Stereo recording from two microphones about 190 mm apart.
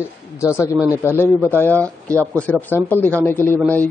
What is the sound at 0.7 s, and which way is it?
Speech, 10° right (ahead or behind).